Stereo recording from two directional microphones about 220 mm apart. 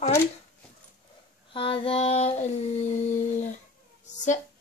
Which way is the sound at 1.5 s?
25° left (ahead or behind).